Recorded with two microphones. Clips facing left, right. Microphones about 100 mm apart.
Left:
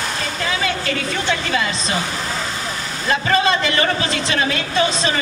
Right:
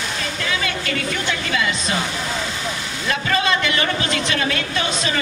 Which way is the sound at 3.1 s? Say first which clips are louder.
Left 3 dB; 35° left (ahead or behind).